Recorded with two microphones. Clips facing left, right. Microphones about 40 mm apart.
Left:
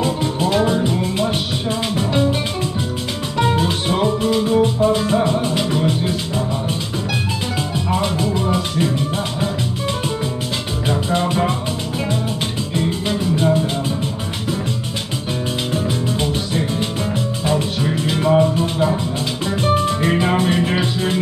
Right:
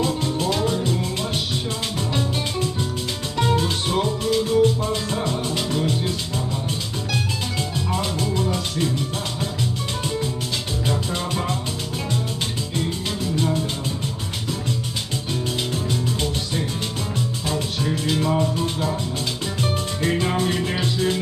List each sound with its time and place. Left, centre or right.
0.0 s music: centre
7.7 s music: centre
10.9 s music: centre
12.7 s music: centre
15.7 s music: centre